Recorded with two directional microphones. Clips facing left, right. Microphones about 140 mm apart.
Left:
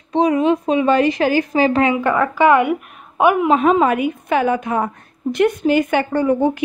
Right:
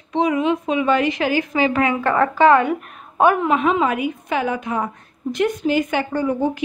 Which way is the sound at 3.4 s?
40° left (ahead or behind).